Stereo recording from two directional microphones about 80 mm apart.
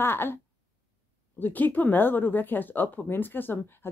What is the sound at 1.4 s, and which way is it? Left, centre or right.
Speech, left.